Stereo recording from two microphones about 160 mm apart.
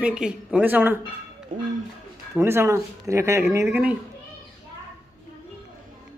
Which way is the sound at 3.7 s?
5° right (ahead or behind).